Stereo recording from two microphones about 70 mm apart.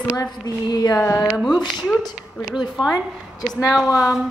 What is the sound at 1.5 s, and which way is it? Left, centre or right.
Speech, left.